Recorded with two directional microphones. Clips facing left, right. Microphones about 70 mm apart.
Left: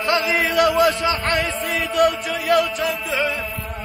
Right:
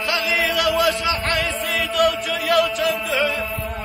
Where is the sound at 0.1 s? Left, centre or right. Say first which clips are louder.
Left 3 dB; left.